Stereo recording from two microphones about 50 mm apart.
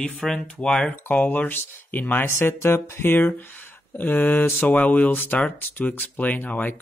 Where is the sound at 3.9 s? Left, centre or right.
Left.